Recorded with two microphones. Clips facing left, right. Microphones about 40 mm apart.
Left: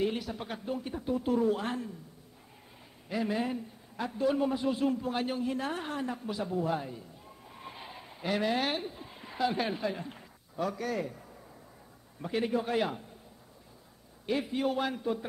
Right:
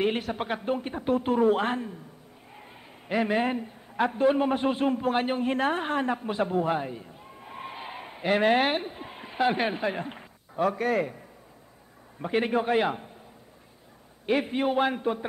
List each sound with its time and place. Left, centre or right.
0.0 s a man's voice: right
3.1 s a man's voice: right
6.6 s a sound: right
7.6 s a sound: right
8.0 s a man's voice: right
12.2 s a woman's voice: right
14.2 s a woman's voice: right